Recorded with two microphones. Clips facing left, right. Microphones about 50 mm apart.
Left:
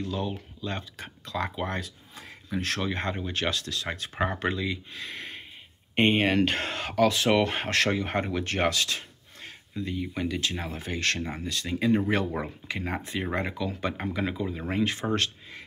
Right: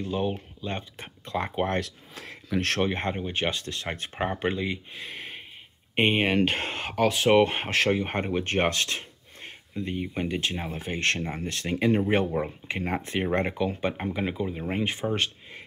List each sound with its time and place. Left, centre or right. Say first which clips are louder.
0.0 s speech: right 3 dB; right
1.8 s speech: right 5 dB; right
2.7 s speech: right 2 dB; right
4.3 s speech: right 1 dB; centre
4.6 s speech: right 1 dB; right
5.0 s a sound: even; centre
5.9 s speech: even; centre; by 11.4 s right
11.4 s speech: right 1 dB; right
11.7 s speech: right 1 dB; right
12.6 s speech: right 2 dB; right
13.7 s speech: right 1 dB; right